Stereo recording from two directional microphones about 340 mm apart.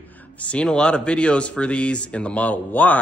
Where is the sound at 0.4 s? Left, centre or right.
Centre.